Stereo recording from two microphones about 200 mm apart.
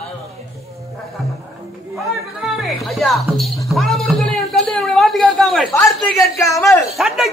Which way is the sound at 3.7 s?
Centre (ahead or behind).